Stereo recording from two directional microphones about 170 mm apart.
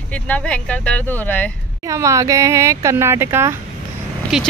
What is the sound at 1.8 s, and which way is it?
Speech, 20° right (ahead or behind).